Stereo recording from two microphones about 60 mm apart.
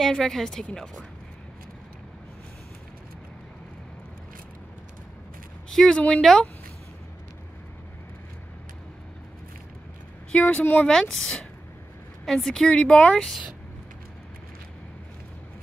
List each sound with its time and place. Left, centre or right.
0.0 s speech: centre
5.7 s speech: centre
10.3 s speech: left
10.9 s speech: centre
12.6 s speech: centre